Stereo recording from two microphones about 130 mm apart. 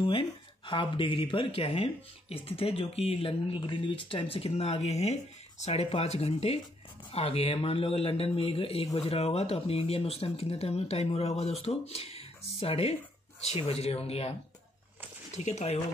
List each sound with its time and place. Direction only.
0.0 s speech: 40° left (ahead or behind)
15.3 s speech: 60° left (ahead or behind)